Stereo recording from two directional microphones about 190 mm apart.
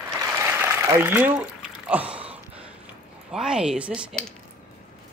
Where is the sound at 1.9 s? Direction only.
5° right (ahead or behind).